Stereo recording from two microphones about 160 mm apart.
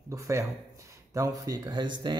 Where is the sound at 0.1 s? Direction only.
20° right (ahead or behind).